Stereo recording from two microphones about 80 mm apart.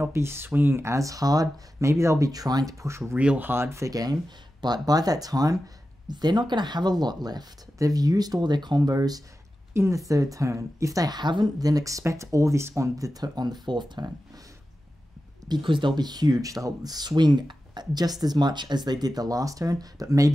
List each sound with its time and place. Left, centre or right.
0.0 s speech: right
3.2 s a woman's voice: centre; by 8.9 s right
8.9 s a woman's voice: right
9.8 s a woman's voice: right
15.4 s speech: right